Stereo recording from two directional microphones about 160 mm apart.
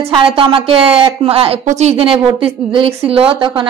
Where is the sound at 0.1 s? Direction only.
35° right (ahead or behind).